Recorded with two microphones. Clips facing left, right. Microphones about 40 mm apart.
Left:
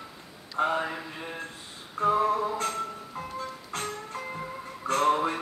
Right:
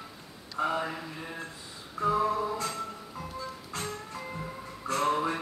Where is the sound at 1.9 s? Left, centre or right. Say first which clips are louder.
Left 3 dB; left.